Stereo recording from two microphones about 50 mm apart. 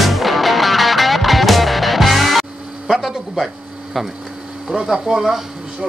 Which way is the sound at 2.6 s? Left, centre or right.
Right.